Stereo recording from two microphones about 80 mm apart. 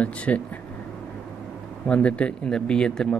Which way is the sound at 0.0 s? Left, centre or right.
Centre.